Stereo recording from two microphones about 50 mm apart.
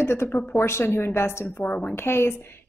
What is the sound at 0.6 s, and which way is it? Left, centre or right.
Speech, left.